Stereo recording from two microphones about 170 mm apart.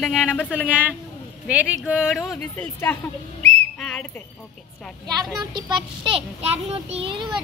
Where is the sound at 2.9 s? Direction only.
10° left (ahead or behind).